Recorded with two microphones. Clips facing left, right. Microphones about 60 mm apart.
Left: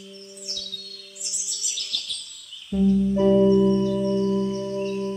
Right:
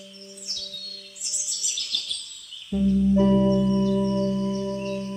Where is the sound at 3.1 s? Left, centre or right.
Centre.